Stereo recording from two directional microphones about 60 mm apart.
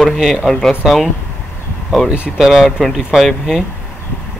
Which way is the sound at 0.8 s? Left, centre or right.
Centre.